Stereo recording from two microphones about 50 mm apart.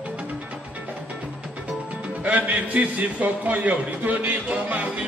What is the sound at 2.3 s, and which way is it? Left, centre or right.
A man's voice, right.